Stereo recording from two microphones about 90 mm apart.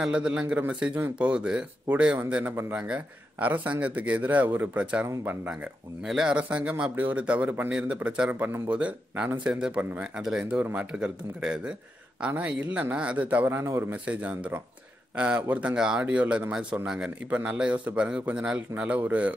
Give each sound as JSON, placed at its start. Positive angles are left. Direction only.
{"t": 0.0, "sound": "speech", "side_deg": -10}
{"t": 5.5, "sound": "speech", "side_deg": -5}
{"t": 13.5, "sound": "speech", "side_deg": -25}